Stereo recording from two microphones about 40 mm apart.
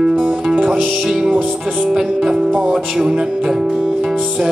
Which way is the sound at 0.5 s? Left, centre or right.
Right.